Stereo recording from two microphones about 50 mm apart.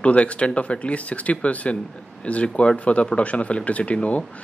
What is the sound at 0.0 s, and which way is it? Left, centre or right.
Speech, left.